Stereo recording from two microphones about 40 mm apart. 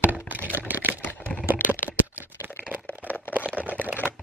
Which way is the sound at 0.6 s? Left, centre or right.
Right.